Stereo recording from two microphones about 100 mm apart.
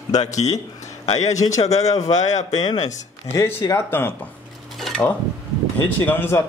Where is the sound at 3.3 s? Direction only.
25° left (ahead or behind).